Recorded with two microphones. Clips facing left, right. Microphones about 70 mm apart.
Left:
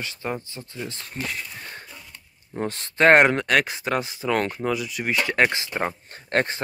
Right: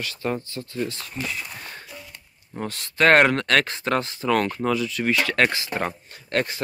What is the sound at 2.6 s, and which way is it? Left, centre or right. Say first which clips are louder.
Speech: left 1 dB; left.